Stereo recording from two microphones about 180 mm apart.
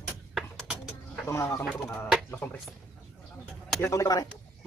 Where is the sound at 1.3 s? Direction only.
15° left (ahead or behind).